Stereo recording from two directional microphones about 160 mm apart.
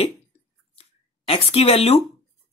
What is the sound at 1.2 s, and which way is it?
Speech, 40° left (ahead or behind).